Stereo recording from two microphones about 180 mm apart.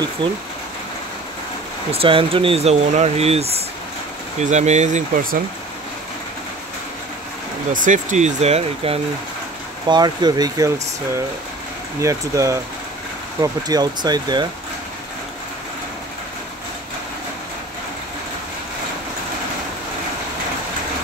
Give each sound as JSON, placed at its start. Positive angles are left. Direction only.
{"t": 0.2, "sound": "speech", "side_deg": -25}
{"t": 1.9, "sound": "speech", "side_deg": -30}
{"t": 7.7, "sound": "speech", "side_deg": -45}
{"t": 9.8, "sound": "speech", "side_deg": -25}
{"t": 12.0, "sound": "speech", "side_deg": -15}